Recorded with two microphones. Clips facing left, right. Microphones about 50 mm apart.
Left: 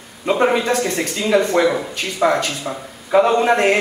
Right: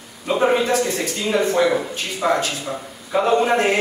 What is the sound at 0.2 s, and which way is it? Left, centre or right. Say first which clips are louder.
Speech: left 1 dB; left.